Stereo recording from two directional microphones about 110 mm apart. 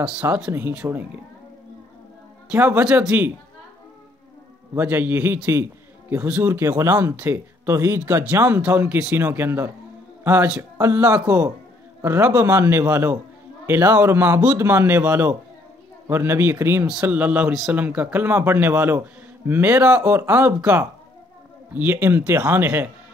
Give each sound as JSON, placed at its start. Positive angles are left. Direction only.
{"t": 0.5, "sound": "a man's voice", "side_deg": -20}
{"t": 2.5, "sound": "a man's voice", "side_deg": -20}
{"t": 2.8, "sound": "speech", "side_deg": -10}
{"t": 4.7, "sound": "a man's voice", "side_deg": -15}
{"t": 10.8, "sound": "a man's voice", "side_deg": -25}
{"t": 16.8, "sound": "a man's voice", "side_deg": -10}